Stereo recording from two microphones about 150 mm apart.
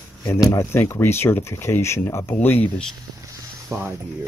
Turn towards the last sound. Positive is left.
turn(degrees=-15)  # may be behind; listen again after turning